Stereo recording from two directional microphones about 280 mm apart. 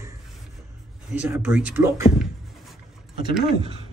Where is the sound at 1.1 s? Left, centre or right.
Centre.